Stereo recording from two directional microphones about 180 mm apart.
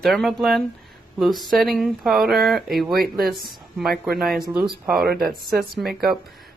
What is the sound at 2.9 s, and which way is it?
Speech, 55° right (ahead or behind).